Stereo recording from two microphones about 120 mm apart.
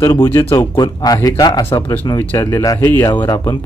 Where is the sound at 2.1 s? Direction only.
15° left (ahead or behind).